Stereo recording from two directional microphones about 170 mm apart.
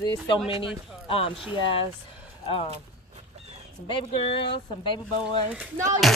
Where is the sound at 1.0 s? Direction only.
35° left (ahead or behind).